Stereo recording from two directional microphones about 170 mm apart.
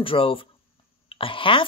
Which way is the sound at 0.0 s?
30° left (ahead or behind).